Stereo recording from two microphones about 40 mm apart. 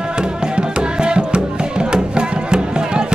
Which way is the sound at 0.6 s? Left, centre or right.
Right.